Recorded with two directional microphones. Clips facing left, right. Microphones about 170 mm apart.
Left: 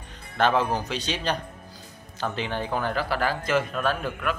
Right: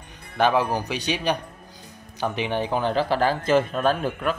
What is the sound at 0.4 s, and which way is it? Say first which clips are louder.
A man's voice: right 2 dB; 15° right (ahead or behind).